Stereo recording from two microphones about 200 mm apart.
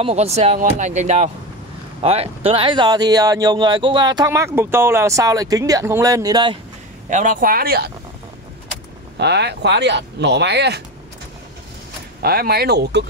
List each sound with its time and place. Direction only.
0.0 s speech: 35° right (ahead or behind)
7.1 s speech: 40° right (ahead or behind)
9.2 s speech: 55° right (ahead or behind)
12.2 s speech: 50° right (ahead or behind)